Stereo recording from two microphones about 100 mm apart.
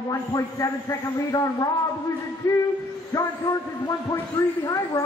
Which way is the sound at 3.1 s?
35° left (ahead or behind).